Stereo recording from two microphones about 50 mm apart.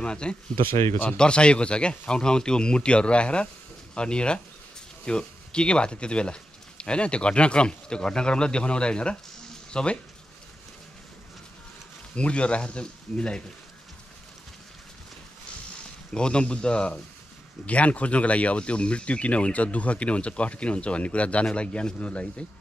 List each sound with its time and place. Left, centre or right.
0.0 s speech: centre
12.2 s speech: left
16.1 s speech: centre